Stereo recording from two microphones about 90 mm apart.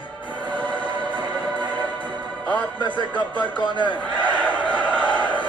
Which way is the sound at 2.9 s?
15° left (ahead or behind).